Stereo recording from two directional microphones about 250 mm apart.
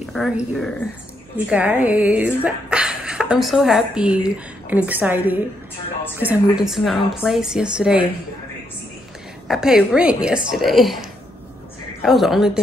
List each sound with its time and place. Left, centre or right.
0.1 s speech: centre
9.5 s speech: centre